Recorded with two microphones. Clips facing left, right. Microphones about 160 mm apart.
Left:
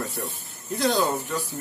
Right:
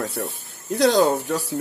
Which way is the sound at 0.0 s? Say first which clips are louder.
Right 4 dB; 75° right (ahead or behind).